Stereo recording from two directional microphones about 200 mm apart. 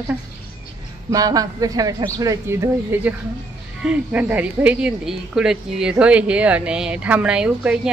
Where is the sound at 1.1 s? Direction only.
20° right (ahead or behind).